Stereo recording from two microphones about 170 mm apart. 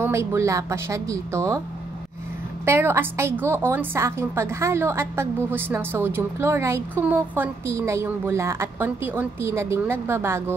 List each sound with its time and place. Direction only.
0.0 s a woman's voice: 15° right (ahead or behind)
2.6 s a woman's voice: 15° right (ahead or behind)